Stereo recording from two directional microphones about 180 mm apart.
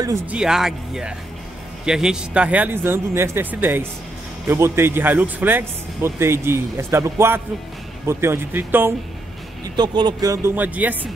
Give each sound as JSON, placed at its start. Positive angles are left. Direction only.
{"t": 0.0, "sound": "speech", "side_deg": -15}
{"t": 0.4, "sound": "speech", "side_deg": -5}
{"t": 9.8, "sound": "speech", "side_deg": -25}